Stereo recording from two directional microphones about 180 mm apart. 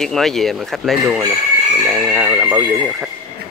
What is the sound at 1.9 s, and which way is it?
Speech, 15° right (ahead or behind).